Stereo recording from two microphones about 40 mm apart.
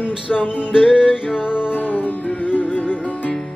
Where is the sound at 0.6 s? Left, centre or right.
Centre.